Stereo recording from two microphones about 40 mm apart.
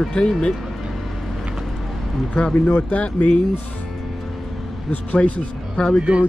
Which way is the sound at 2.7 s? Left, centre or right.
Left.